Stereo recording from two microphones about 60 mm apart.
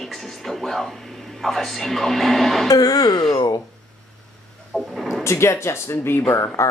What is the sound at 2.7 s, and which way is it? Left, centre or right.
Speech, left.